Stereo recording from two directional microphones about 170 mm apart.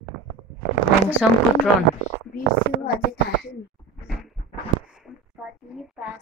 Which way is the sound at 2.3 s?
65° left (ahead or behind).